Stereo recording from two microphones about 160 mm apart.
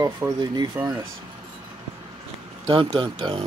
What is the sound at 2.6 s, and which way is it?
Speech, 30° right (ahead or behind).